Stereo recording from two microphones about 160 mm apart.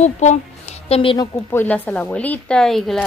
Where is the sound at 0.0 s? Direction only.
45° left (ahead or behind).